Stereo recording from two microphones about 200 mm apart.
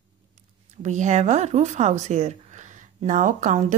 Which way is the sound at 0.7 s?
35° right (ahead or behind).